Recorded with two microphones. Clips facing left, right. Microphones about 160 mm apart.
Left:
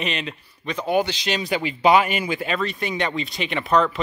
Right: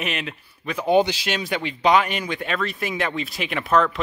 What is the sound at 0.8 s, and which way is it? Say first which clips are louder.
Speech: right 4 dB; 20° right (ahead or behind).